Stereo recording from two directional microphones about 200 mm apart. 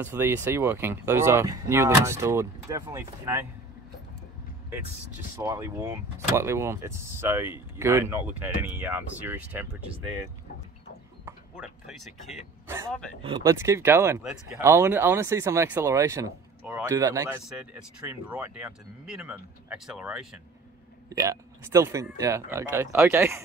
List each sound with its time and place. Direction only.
0.0 s speech: 10° right (ahead or behind)
5.4 s speech: 15° right (ahead or behind)
13.2 s speech: 20° right (ahead or behind); by 20.3 s 5° right (ahead or behind)
21.1 s speech: 15° right (ahead or behind)